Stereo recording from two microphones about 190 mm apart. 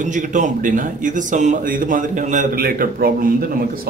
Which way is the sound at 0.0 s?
40° right (ahead or behind).